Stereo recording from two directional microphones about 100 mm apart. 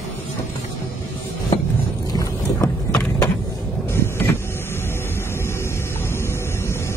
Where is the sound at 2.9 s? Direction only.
10° left (ahead or behind).